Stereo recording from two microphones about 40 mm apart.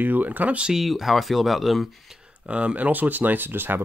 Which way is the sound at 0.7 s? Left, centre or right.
Centre.